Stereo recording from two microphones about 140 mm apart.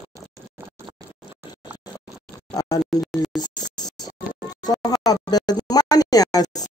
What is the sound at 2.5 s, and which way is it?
Music, 25° left (ahead or behind).